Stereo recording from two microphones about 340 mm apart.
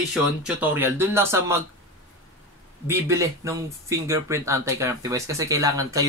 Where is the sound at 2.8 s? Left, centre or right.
Centre.